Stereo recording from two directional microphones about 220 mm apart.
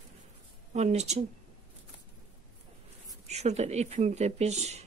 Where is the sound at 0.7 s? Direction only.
30° right (ahead or behind).